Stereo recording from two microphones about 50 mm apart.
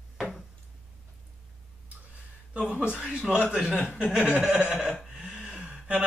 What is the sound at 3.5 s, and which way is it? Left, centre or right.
Speech, right.